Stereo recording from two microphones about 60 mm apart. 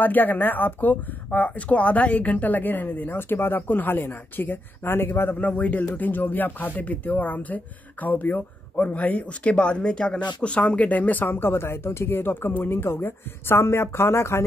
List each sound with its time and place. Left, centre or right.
0.0 s speech: left
5.4 s speech: left